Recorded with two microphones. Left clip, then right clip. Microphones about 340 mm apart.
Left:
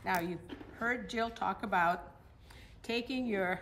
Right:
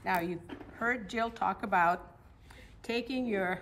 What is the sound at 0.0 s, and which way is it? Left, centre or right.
A woman's voice, centre.